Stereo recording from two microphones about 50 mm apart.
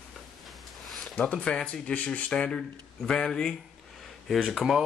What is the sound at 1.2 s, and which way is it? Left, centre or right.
Speech, left.